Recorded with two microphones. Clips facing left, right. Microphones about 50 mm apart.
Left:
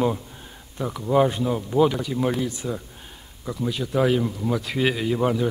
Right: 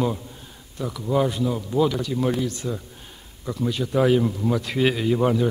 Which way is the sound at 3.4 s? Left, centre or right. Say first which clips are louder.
Right 2 dB; centre.